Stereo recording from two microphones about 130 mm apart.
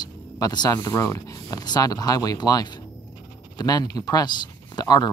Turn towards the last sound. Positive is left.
turn(degrees=30)  # may be behind; listen again after turning